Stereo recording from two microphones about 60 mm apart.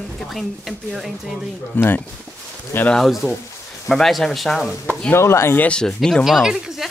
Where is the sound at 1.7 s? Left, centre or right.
Left.